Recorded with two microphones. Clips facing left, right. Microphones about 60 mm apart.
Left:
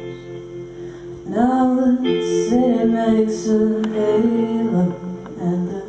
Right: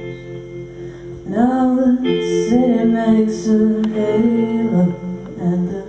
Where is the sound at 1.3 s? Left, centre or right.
Centre.